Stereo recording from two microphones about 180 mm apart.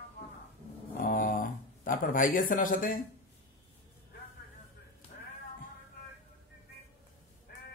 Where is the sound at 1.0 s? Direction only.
50° left (ahead or behind).